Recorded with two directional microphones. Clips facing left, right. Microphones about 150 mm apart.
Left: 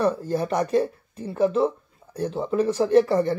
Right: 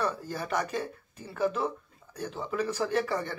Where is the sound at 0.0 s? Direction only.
30° left (ahead or behind).